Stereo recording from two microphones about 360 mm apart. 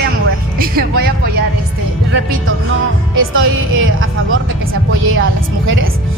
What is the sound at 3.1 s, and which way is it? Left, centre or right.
A woman's voice, right.